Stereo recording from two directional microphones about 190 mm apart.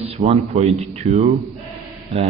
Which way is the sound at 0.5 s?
35° right (ahead or behind).